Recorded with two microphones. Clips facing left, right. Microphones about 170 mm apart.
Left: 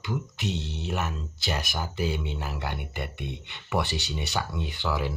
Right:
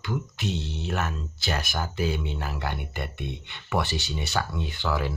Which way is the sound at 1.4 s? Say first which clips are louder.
Right 2 dB; 15° left (ahead or behind).